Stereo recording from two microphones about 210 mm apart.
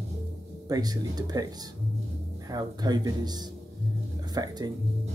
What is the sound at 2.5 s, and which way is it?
Speech, 20° right (ahead or behind).